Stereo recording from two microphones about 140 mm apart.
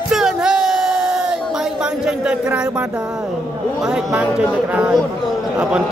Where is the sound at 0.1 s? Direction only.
5° right (ahead or behind).